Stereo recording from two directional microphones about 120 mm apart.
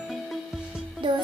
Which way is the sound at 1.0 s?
40° right (ahead or behind).